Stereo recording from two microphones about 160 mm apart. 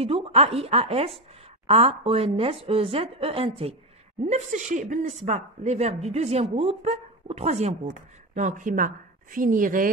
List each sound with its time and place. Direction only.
0.0 s a woman's voice: 35° right (ahead or behind)
4.2 s speech: 45° right (ahead or behind)
8.4 s speech: 50° right (ahead or behind)